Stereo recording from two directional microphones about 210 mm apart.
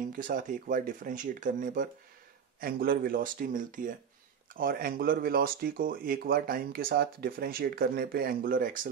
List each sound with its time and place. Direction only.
0.1 s speech: 40° right (ahead or behind)